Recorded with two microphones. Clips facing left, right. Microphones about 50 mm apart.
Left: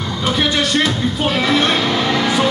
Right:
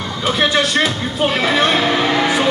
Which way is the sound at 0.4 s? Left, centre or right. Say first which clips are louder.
Right 2 dB; centre.